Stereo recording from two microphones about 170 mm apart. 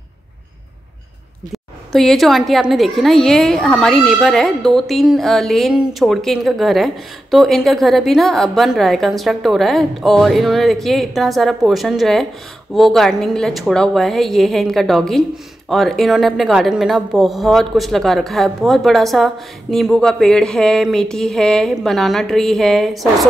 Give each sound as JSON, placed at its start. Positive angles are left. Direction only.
{"t": 1.5, "sound": "a woman's voice", "side_deg": 0}